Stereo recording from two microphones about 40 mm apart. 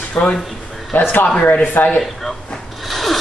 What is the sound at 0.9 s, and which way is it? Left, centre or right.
Speech, left.